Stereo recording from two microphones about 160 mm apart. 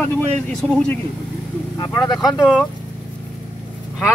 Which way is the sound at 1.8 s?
25° left (ahead or behind).